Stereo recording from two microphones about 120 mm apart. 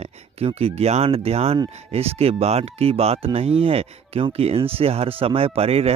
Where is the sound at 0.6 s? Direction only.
60° right (ahead or behind).